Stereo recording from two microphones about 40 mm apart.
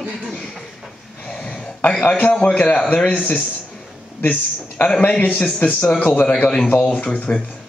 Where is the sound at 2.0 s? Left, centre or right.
Left.